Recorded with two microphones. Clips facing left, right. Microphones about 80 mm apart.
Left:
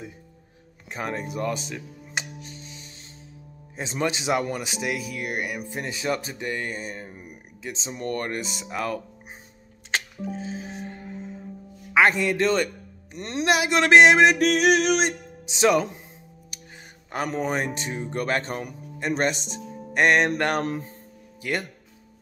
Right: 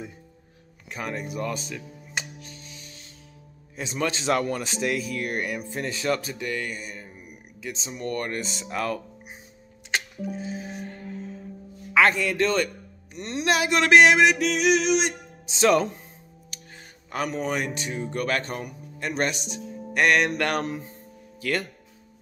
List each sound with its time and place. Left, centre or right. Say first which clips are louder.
0.8 s music: left 2 dB; left
3.7 s speech: left 1 dB; left
4.1 s speech: right 1 dB; centre; by 8.4 s left
8.4 s speech: even; centre
9.8 s music: even; left
11.9 s speech: left 1 dB; centre
14.4 s a sound: left 2 dB; left
15.4 s speech: even; centre
16.7 s speech: even; left
21.4 s speech: right 1 dB; centre